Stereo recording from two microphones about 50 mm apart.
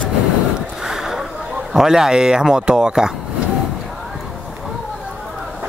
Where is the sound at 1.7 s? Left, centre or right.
Centre.